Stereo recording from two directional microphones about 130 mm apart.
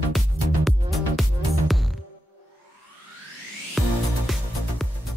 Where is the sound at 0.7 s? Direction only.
Centre (ahead or behind).